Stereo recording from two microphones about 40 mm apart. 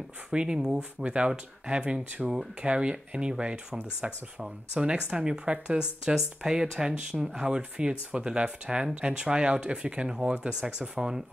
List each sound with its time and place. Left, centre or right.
0.3 s speech: right
4.4 s speech: centre